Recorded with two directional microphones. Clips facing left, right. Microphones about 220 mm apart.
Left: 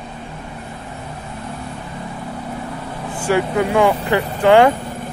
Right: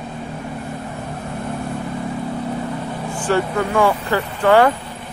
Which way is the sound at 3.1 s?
10° left (ahead or behind).